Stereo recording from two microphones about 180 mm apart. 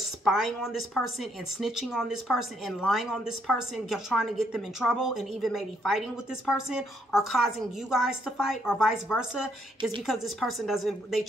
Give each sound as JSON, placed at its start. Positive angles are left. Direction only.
{"t": 0.0, "sound": "a woman's voice", "side_deg": 0}
{"t": 9.8, "sound": "a woman's voice", "side_deg": -25}
{"t": 10.0, "sound": "a woman's voice", "side_deg": 0}